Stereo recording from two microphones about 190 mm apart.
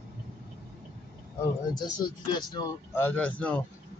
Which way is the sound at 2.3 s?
20° left (ahead or behind).